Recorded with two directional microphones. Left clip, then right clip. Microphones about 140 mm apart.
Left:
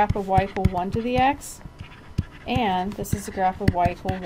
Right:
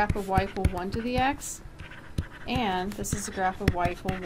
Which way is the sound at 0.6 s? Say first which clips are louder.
Left 5 dB; 35° left (ahead or behind).